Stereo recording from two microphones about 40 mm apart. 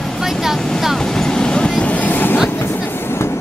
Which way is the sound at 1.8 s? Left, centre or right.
Left.